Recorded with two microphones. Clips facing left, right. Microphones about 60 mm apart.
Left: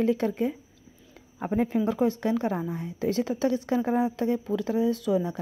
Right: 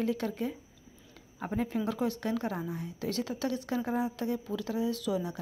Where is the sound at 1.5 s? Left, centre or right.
Left.